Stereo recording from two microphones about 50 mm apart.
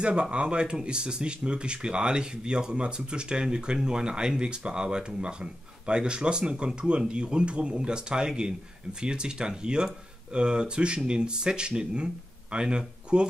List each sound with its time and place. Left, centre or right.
0.0 s speech: right